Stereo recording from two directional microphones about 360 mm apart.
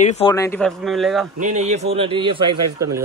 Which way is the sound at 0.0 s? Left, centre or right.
Centre.